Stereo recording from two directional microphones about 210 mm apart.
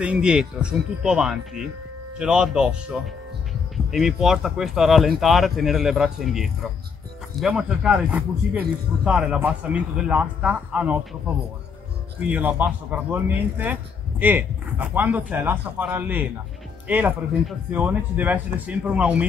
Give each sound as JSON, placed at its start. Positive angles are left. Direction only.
{"t": 0.0, "sound": "speech", "side_deg": -5}
{"t": 12.2, "sound": "speech", "side_deg": -5}